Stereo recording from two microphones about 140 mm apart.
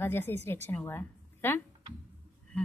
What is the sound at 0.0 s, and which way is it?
A woman's voice, 15° left (ahead or behind).